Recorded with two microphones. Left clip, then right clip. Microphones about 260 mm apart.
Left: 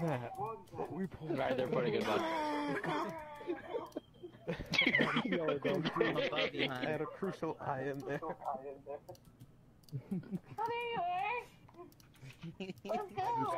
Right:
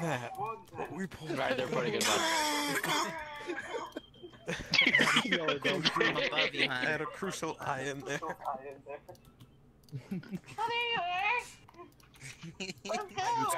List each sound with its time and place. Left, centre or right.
0.0 s a child's voice: right
0.4 s speech: right
1.6 s speech: right
2.0 s speech: right
4.6 s speech: centre
5.0 s speech: right
5.3 s speech: right
6.1 s speech: centre
6.5 s a child's voice: right
7.1 s speech: right
10.3 s a child's voice: right
12.5 s a child's voice: right